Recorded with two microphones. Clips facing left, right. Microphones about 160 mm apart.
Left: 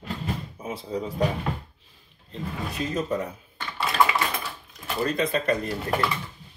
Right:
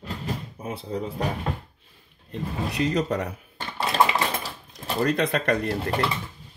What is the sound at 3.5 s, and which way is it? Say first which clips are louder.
Typewriter: right 1 dB; 35° right (ahead or behind).